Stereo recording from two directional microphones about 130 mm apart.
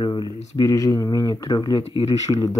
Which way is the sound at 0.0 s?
35° left (ahead or behind).